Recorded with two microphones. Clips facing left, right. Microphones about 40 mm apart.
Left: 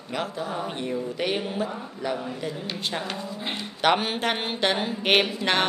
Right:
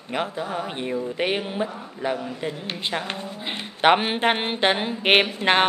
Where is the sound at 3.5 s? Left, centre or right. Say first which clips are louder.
Right 4 dB; right.